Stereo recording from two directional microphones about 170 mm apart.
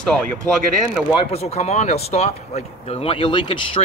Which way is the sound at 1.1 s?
35° left (ahead or behind).